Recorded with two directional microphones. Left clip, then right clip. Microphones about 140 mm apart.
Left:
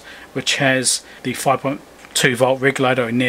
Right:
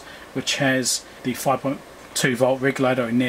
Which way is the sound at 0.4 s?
30° left (ahead or behind).